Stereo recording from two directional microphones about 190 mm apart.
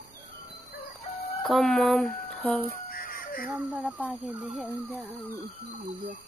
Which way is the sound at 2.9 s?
50° left (ahead or behind).